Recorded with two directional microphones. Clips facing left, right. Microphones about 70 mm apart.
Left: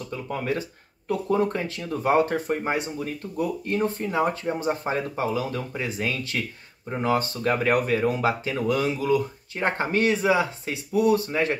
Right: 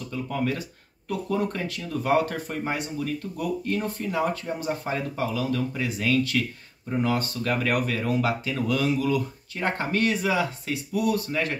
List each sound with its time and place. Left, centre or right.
0.1 s speech: left